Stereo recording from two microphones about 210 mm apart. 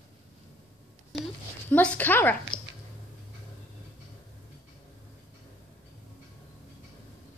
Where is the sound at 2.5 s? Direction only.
25° left (ahead or behind).